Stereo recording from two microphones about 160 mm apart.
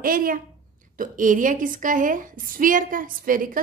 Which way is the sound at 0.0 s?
60° right (ahead or behind).